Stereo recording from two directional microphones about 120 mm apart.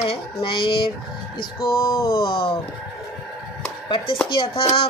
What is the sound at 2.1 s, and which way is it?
Speech, 50° left (ahead or behind).